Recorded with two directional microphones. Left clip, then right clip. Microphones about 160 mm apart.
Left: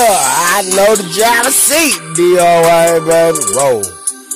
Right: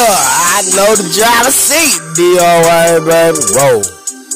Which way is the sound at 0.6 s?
15° right (ahead or behind).